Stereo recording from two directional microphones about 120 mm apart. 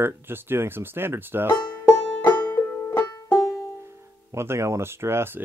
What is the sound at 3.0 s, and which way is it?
Music, 30° left (ahead or behind).